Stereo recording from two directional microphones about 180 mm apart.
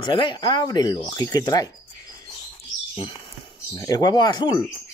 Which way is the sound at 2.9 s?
30° left (ahead or behind).